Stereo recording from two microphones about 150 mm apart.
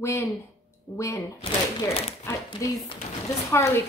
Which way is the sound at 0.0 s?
20° left (ahead or behind).